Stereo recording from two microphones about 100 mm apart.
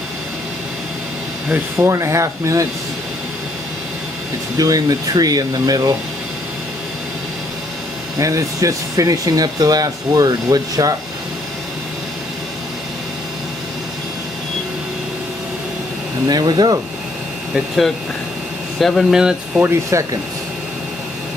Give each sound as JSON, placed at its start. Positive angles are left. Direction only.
{"t": 1.8, "sound": "speech", "side_deg": -30}
{"t": 4.6, "sound": "speech", "side_deg": -35}
{"t": 8.2, "sound": "speech", "side_deg": -35}
{"t": 16.3, "sound": "speech", "side_deg": -45}
{"t": 18.8, "sound": "speech", "side_deg": 0}
{"t": 19.6, "sound": "speech", "side_deg": -30}